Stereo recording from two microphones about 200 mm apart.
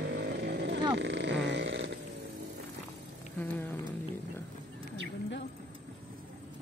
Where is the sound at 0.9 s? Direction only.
60° right (ahead or behind).